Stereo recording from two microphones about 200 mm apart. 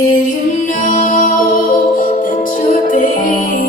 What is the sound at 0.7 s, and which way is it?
Music, 40° left (ahead or behind).